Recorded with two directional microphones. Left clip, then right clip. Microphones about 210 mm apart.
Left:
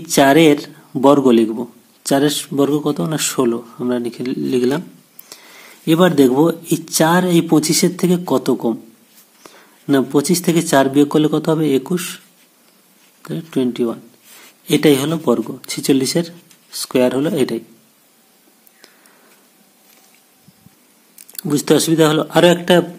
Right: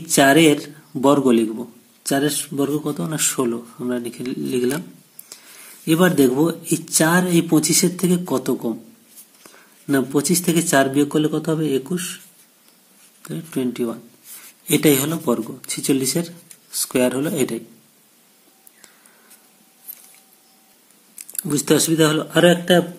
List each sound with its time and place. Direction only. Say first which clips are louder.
0.0 s a man's voice: left 3 dB; 20° left (ahead or behind)
13.2 s a man's voice: left 5 dB; 20° left (ahead or behind)
21.3 s a man's voice: left 4 dB; 20° left (ahead or behind)